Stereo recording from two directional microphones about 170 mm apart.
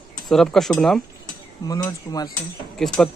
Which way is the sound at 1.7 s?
20° left (ahead or behind).